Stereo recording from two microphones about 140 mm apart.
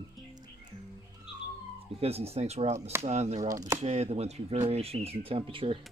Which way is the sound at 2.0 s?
45° right (ahead or behind).